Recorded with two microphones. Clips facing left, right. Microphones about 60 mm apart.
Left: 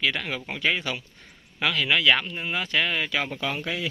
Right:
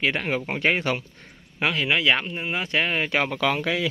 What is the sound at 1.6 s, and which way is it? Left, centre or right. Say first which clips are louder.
Speech: even; right.